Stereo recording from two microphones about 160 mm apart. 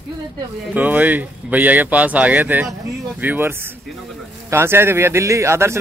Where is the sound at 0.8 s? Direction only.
10° right (ahead or behind).